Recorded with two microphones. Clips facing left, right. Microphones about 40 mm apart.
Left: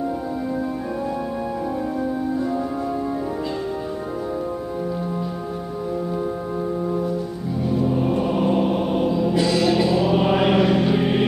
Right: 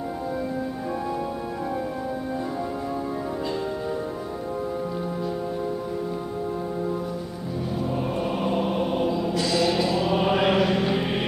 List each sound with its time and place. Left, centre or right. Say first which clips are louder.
7.8 s music: left 6 dB; centre
9.3 s music: left 5 dB; left
9.6 s music: left 4 dB; centre